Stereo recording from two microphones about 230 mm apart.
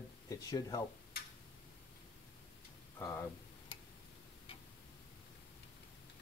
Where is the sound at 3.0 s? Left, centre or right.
Centre.